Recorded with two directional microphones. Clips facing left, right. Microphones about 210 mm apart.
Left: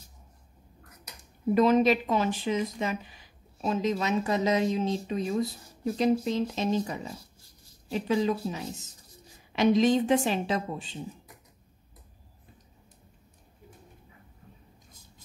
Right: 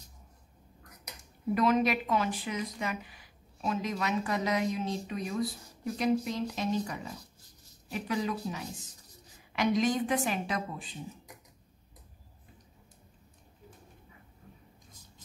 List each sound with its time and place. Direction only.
1.5 s speech: 25° left (ahead or behind)